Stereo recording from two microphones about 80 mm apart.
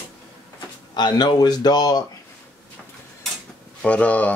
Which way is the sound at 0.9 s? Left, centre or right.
Left.